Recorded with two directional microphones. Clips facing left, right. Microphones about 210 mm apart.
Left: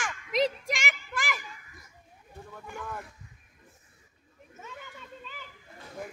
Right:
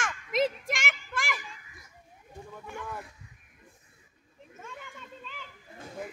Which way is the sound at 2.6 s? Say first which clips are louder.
Even; centre (ahead or behind).